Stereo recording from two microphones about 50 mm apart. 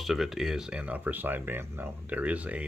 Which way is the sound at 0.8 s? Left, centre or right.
Right.